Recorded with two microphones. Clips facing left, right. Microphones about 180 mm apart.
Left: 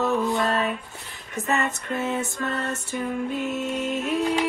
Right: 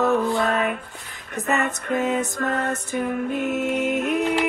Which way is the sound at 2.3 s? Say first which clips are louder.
Right 4 dB; 40° right (ahead or behind).